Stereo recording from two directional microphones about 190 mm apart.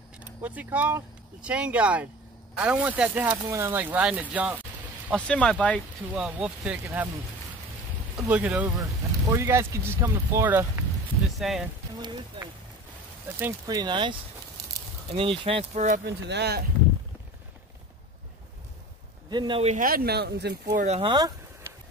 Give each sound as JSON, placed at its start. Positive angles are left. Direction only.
{"t": 0.2, "sound": "speech", "side_deg": -10}
{"t": 5.3, "sound": "speech", "side_deg": 5}
{"t": 6.1, "sound": "speech", "side_deg": -5}
{"t": 8.2, "sound": "speech", "side_deg": -5}
{"t": 11.3, "sound": "speech", "side_deg": 0}
{"t": 12.4, "sound": "speech", "side_deg": -25}
{"t": 15.1, "sound": "speech", "side_deg": -30}
{"t": 16.1, "sound": "speech", "side_deg": -60}
{"t": 19.3, "sound": "speech", "side_deg": -25}
{"t": 19.7, "sound": "speech", "side_deg": -50}
{"t": 20.7, "sound": "speech", "side_deg": -35}